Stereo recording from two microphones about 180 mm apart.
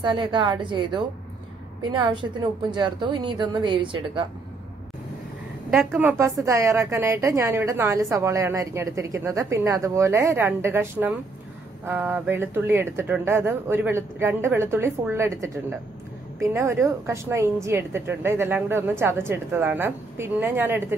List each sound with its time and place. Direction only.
0.0 s a woman's voice: 25° right (ahead or behind)
2.7 s a woman's voice: 25° right (ahead or behind)
5.9 s a woman's voice: 10° right (ahead or behind)